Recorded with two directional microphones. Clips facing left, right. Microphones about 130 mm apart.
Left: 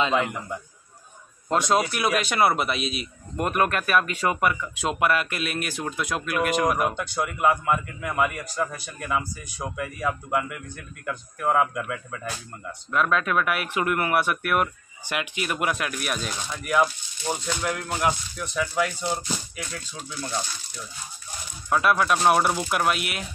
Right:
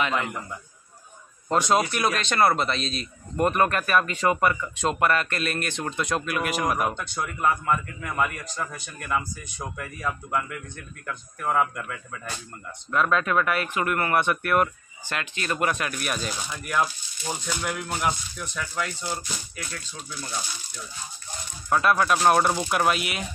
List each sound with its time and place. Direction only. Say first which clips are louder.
1.5 s speech: even; centre (ahead or behind)
19.0 s speech: left 4 dB; 35° left (ahead or behind)
21.6 s speech: even; centre (ahead or behind)